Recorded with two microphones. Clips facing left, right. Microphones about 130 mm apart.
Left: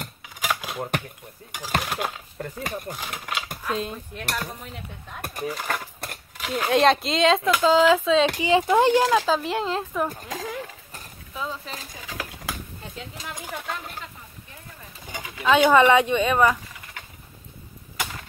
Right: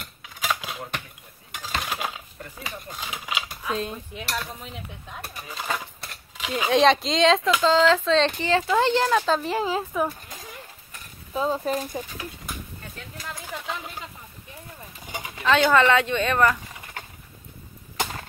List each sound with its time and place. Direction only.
0.2 s a sound: 10° left (ahead or behind)
1.8 s speech: 5° left (ahead or behind)
2.3 s speech: 50° left (ahead or behind)
2.9 s speech: centre (ahead or behind)
5.6 s speech: centre (ahead or behind)
9.4 s speech: centre (ahead or behind)
10.2 s a sound: 90° left
11.3 s speech: 40° right (ahead or behind)
12.0 s speech: 90° left
15.1 s bird: 25° right (ahead or behind)
15.4 s speech: 15° left (ahead or behind)